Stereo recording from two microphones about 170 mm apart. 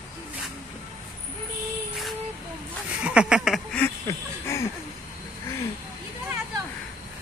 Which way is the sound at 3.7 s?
15° left (ahead or behind).